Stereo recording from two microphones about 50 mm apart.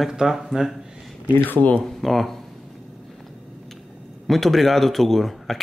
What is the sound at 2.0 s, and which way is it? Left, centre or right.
Speech, centre.